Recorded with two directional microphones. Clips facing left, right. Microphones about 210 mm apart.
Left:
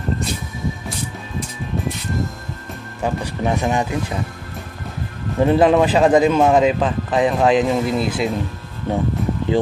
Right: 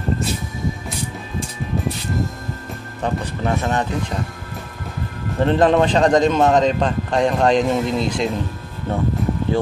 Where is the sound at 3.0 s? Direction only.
15° left (ahead or behind).